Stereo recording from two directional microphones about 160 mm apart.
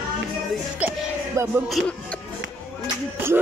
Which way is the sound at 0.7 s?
15° right (ahead or behind).